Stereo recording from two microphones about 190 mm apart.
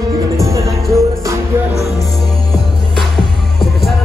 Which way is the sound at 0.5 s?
15° right (ahead or behind).